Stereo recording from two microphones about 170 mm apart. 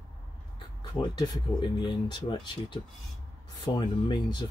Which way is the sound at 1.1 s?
25° left (ahead or behind).